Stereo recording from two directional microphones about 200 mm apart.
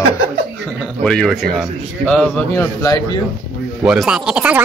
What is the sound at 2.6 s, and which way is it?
Speech, 20° left (ahead or behind).